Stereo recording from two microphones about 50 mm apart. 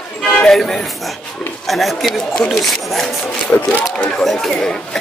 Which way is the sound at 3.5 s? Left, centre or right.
Left.